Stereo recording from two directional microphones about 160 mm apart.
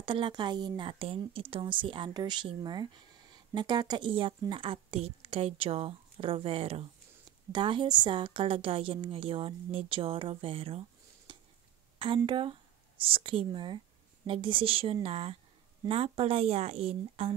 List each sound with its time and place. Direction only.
0.0 s a woman's voice: 30° right (ahead or behind)